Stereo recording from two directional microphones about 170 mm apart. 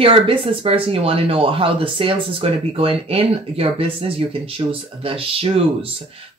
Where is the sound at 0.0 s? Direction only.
30° right (ahead or behind).